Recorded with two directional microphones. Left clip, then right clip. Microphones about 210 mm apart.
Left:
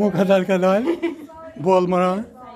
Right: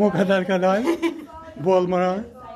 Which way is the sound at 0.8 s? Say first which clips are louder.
Even; 45° right (ahead or behind).